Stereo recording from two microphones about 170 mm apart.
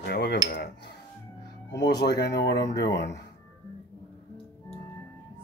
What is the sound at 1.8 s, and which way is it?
Speech, 75° left (ahead or behind).